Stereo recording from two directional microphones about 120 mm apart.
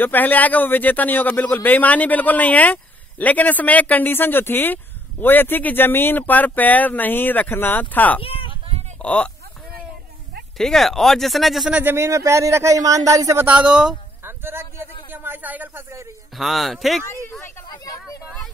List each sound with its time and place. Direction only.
0.0 s speech: 15° left (ahead or behind)
8.2 s a sound: 50° left (ahead or behind)
9.0 s speech: 10° left (ahead or behind)
10.6 s speech: 5° left (ahead or behind)
11.8 s speech: 20° right (ahead or behind)
13.5 s speech: 10° right (ahead or behind)
14.2 s a sound: 20° right (ahead or behind)
15.0 s speech: 15° right (ahead or behind)
16.3 s speech: centre (ahead or behind)